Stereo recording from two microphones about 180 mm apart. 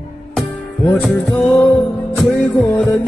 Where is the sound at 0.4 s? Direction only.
5° left (ahead or behind).